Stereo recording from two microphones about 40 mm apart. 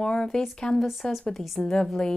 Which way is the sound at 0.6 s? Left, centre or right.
Left.